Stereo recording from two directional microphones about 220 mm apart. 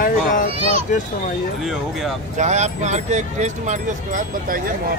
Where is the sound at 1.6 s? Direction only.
Centre (ahead or behind).